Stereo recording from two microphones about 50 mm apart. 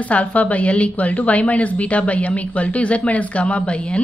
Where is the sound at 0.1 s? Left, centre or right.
Left.